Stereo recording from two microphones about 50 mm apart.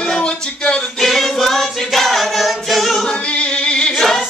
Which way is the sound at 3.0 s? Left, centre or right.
Centre.